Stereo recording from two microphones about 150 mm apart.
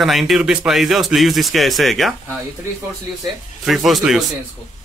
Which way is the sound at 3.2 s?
Centre (ahead or behind).